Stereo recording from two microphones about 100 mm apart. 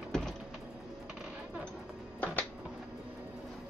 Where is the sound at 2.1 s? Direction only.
20° left (ahead or behind).